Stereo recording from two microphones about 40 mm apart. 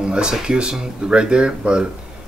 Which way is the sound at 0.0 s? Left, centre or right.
Right.